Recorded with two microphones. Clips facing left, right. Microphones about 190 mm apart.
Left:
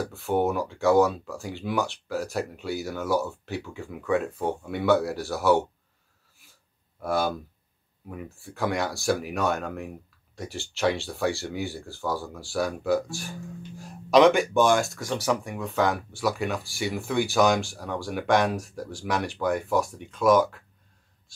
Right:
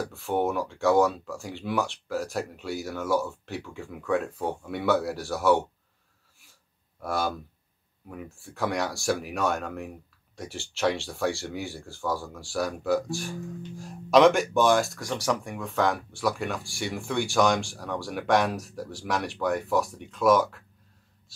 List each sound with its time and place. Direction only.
0.1 s speech: centre (ahead or behind)
7.0 s speech: centre (ahead or behind)